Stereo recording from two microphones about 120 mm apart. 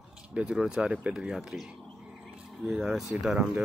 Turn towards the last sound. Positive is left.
turn(degrees=-5)  # may be behind; listen again after turning